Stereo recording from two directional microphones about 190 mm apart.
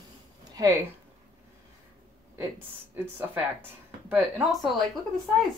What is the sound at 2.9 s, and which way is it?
Speech, 10° right (ahead or behind).